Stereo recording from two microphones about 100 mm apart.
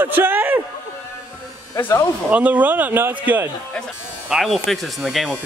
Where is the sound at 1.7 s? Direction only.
30° left (ahead or behind).